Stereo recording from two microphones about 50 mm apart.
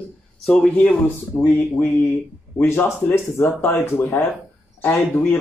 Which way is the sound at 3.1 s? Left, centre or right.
Left.